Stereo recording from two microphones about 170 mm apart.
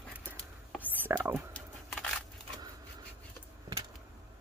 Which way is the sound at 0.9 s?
10° right (ahead or behind).